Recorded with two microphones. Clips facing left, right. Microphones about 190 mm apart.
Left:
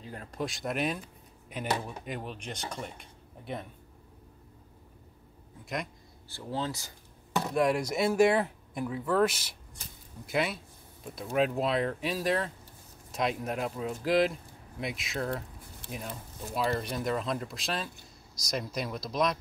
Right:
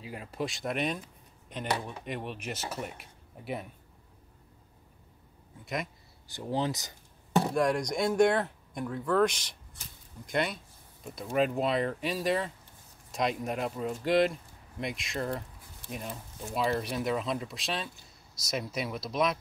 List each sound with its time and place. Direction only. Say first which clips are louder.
0.0 s speech: right 1 dB; 5° right (ahead or behind)
6.2 s speech: right 3 dB; 15° right (ahead or behind)
7.5 s speech: left 1 dB; 5° left (ahead or behind)